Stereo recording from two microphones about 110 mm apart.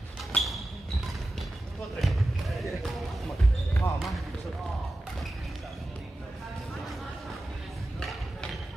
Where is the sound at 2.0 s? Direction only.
Centre (ahead or behind).